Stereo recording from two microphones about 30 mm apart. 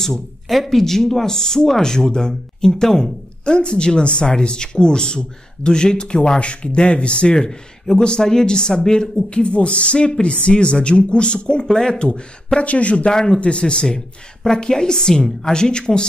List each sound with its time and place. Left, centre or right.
0.5 s speech: centre
3.4 s speech: left
8.0 s speech: left
11.6 s speech: left
12.5 s speech: left
13.1 s speech: left
13.4 s speech: left
13.9 s speech: centre